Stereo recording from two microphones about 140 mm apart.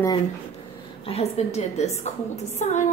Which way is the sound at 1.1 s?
50° left (ahead or behind).